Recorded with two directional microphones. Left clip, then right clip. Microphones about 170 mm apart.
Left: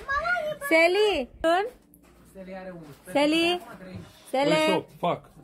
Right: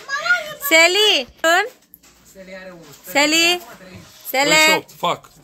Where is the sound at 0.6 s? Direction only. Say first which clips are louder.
Right 8 dB; 5° left (ahead or behind).